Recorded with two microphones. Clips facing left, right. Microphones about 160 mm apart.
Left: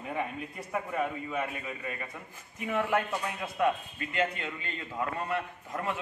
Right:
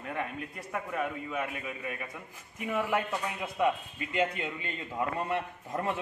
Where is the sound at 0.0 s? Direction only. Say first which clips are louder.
Left 1 dB; 5° left (ahead or behind).